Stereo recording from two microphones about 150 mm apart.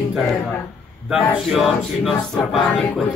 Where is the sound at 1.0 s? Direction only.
5° right (ahead or behind).